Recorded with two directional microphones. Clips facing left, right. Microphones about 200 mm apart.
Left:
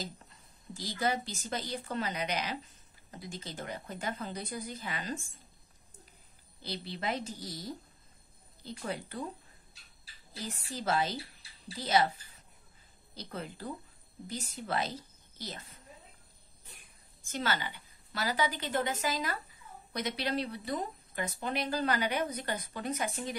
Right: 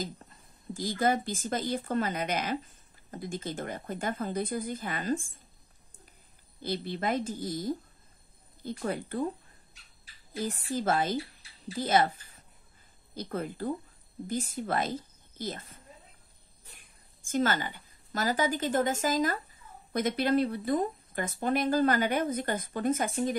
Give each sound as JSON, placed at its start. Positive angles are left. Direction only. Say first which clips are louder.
{"t": 0.7, "sound": "speech", "louder": "right 5 dB", "side_deg": -50}
{"t": 6.6, "sound": "speech", "louder": "right 6 dB", "side_deg": -50}
{"t": 10.3, "sound": "speech", "louder": "right 9 dB", "side_deg": -50}
{"t": 13.1, "sound": "a woman's voice", "louder": "right 7 dB", "side_deg": -50}
{"t": 17.2, "sound": "speech", "louder": "right 6 dB", "side_deg": -50}